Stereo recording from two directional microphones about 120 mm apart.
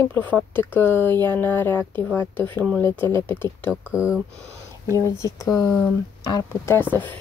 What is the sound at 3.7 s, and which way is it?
Speech, 10° right (ahead or behind).